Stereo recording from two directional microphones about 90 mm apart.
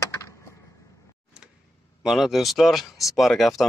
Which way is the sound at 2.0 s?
5° right (ahead or behind).